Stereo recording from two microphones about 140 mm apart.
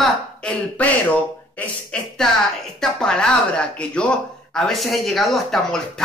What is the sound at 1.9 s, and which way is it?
Speech, 5° left (ahead or behind).